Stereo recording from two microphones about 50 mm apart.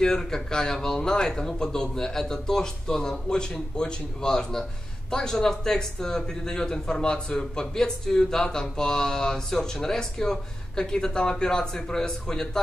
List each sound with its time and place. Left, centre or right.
0.0 s speech: centre